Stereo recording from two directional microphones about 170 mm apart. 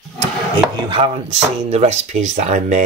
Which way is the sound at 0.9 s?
35° right (ahead or behind).